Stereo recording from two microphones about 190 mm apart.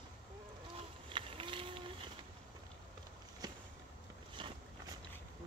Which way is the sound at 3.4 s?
20° right (ahead or behind).